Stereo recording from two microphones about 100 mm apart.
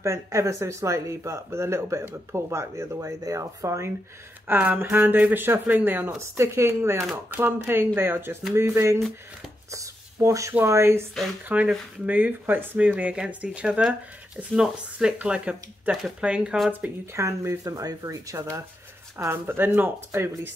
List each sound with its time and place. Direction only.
0.0 s speech: 30° right (ahead or behind)
4.5 s speech: 20° right (ahead or behind)
9.7 s a sound: 30° right (ahead or behind)
10.5 s speech: 25° right (ahead or behind)
11.4 s speech: 15° right (ahead or behind)
16.8 s speech: 25° right (ahead or behind)